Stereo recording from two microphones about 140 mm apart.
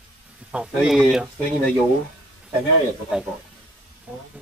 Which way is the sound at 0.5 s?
5° right (ahead or behind).